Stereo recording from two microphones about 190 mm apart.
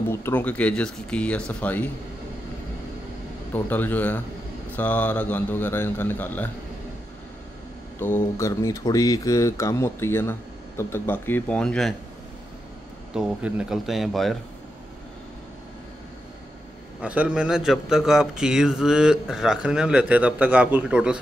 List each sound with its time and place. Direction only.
0.1 s speech: 10° left (ahead or behind)
3.5 s speech: 10° left (ahead or behind)
8.0 s speech: 15° left (ahead or behind)
13.1 s a man's voice: 5° right (ahead or behind)
17.0 s a man's voice: 5° right (ahead or behind)